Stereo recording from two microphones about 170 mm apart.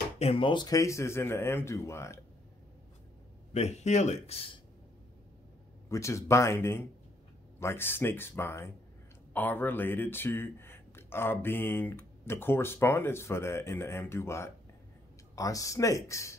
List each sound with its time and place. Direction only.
0.2 s speech: 35° left (ahead or behind); by 2.1 s 15° left (ahead or behind)
3.5 s speech: 40° left (ahead or behind)
5.9 s speech: 15° left (ahead or behind)